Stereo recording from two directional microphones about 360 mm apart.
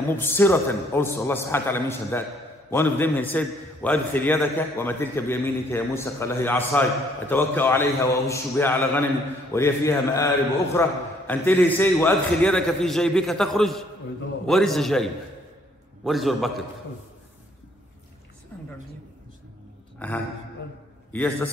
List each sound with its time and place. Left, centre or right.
0.2 s a man's voice: centre
18.5 s a sound: centre
21.1 s a man's voice: centre